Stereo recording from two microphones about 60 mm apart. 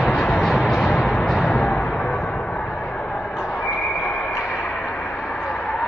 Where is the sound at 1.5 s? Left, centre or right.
Centre.